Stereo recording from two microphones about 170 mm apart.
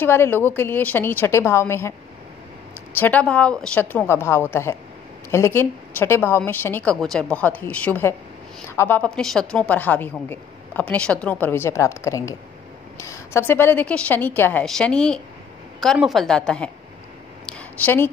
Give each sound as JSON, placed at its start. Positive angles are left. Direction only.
{"t": 0.0, "sound": "a woman's voice", "side_deg": 15}
{"t": 3.0, "sound": "a woman's voice", "side_deg": 10}
{"t": 17.5, "sound": "a sound", "side_deg": 10}